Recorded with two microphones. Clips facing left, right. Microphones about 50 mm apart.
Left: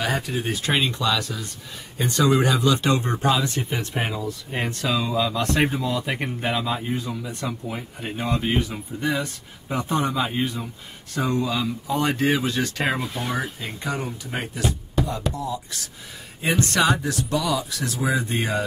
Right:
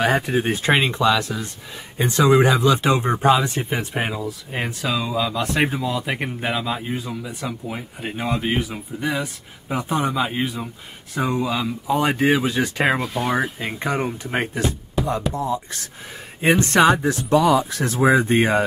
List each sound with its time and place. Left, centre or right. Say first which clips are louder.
0.0 s speech: right 6 dB; right
13.0 s speech: right 5 dB; centre
13.7 s speech: right 5 dB; right
15.0 s music: right 2 dB; centre
15.3 s speech: right 5 dB; right